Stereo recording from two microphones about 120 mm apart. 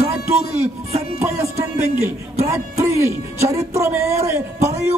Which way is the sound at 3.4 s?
25° right (ahead or behind).